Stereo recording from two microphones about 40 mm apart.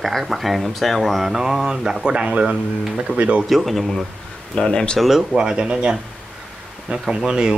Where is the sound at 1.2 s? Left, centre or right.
Centre.